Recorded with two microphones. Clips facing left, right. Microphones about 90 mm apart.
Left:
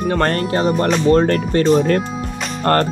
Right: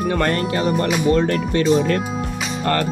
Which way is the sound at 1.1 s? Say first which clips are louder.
Left 5 dB; 40° left (ahead or behind).